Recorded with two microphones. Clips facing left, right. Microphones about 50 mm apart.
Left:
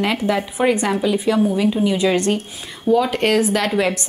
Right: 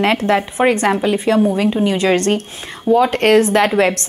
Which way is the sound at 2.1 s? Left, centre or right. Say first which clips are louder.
Right 3 dB; right.